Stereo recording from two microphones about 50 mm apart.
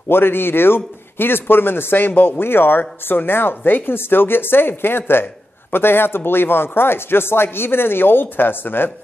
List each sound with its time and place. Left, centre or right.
0.1 s speech: left